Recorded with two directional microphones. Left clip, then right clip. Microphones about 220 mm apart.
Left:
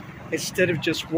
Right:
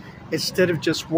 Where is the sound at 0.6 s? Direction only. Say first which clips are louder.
Right 2 dB; 20° right (ahead or behind).